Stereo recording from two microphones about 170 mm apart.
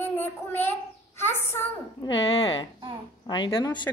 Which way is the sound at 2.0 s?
25° left (ahead or behind).